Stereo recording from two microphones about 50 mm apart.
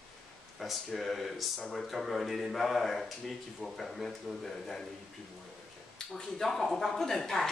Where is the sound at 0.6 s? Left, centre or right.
Centre.